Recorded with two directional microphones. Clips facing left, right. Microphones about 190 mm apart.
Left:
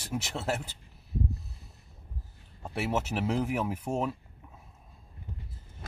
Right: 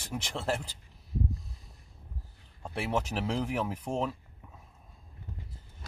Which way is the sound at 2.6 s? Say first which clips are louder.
Left 1 dB; 5° left (ahead or behind).